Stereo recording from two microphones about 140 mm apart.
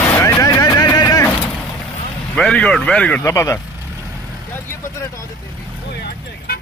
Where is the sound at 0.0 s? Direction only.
20° left (ahead or behind).